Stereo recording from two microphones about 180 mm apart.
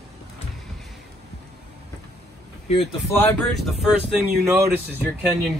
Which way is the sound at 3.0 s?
10° left (ahead or behind).